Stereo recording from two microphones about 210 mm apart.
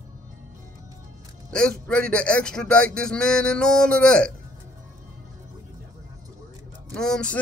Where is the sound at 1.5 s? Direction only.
5° left (ahead or behind).